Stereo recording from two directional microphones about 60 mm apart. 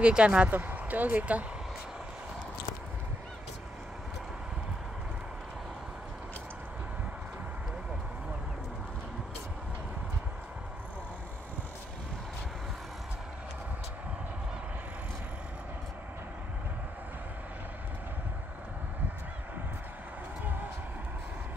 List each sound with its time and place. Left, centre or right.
0.0 s speech: centre
0.6 s speech: right